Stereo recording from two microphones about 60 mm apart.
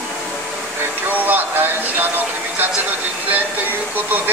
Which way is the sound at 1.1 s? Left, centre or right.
Right.